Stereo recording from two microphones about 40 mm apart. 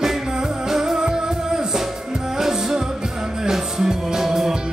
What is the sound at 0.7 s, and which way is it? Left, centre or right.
Music, centre.